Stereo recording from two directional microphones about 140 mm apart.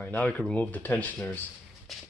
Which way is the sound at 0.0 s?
10° left (ahead or behind).